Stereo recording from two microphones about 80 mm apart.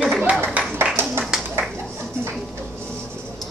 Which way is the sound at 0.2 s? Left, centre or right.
Right.